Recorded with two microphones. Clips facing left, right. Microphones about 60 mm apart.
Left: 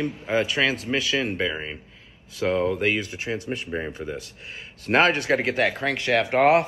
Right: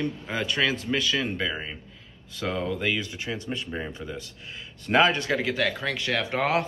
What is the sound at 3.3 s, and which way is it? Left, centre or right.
Speech, centre.